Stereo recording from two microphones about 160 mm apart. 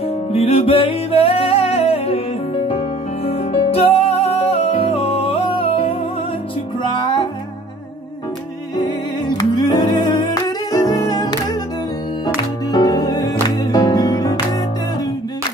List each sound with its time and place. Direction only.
0.3 s music: 35° left (ahead or behind)
7.0 s music: 30° left (ahead or behind)
9.7 s music: 25° left (ahead or behind)
12.7 s music: 25° left (ahead or behind)